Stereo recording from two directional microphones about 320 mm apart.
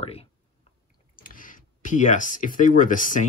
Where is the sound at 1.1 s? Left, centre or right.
Left.